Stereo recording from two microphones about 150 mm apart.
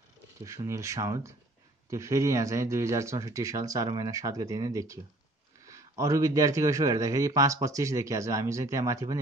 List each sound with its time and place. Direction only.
0.4 s a man's voice: 20° right (ahead or behind)